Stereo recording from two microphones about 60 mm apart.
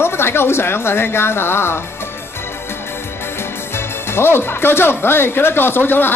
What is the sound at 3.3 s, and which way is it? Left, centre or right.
A man's voice, left.